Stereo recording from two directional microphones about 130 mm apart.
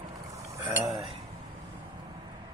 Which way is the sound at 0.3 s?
25° right (ahead or behind).